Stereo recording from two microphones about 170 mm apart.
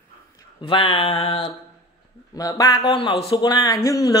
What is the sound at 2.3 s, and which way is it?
Speech, 20° left (ahead or behind).